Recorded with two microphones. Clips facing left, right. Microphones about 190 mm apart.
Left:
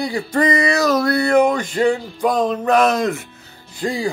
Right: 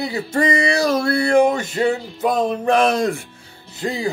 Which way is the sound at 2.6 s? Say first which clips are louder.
Left 1 dB; 30° right (ahead or behind).